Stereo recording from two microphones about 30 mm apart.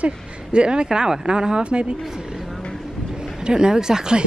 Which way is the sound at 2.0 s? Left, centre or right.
Centre.